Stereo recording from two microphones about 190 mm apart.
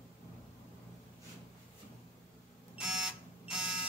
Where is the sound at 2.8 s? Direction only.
5° right (ahead or behind).